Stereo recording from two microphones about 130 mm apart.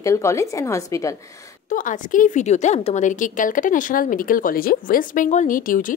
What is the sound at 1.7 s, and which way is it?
A woman's voice, 90° left.